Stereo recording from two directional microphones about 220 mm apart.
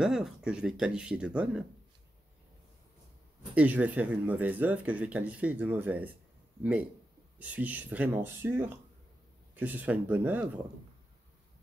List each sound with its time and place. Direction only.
0.0 s speech: centre (ahead or behind)
3.5 s speech: 5° right (ahead or behind)
7.3 s speech: 5° right (ahead or behind)